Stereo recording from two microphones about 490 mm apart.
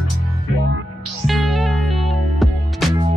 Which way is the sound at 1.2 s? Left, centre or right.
Centre.